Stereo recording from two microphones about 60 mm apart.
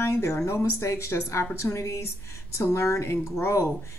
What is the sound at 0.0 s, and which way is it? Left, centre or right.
A woman's voice, left.